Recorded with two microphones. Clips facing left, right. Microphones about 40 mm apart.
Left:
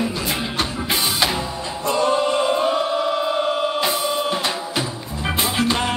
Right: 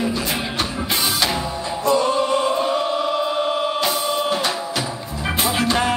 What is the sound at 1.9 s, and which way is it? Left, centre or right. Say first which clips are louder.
Chant: right 1 dB; left.